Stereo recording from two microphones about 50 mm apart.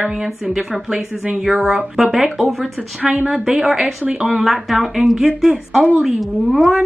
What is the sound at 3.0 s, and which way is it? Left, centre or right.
Speech, right.